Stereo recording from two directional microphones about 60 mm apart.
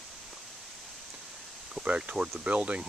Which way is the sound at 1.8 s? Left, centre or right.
Centre.